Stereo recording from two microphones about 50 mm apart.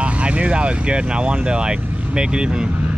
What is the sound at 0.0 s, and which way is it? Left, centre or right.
Speech, right.